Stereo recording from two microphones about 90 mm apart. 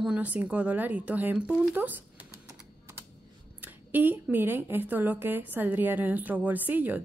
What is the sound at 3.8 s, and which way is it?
A woman's voice, 20° right (ahead or behind).